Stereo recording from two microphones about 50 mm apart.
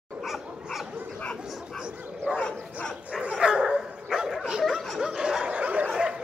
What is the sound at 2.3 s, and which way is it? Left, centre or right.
Bow-wow, left.